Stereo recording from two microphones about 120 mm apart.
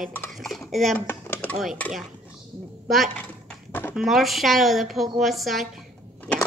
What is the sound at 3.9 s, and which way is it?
A woman's voice, centre (ahead or behind).